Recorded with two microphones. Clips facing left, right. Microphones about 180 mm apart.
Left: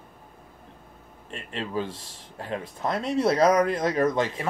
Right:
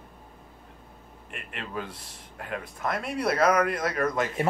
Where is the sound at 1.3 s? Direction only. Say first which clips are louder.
Left 5 dB; 30° left (ahead or behind).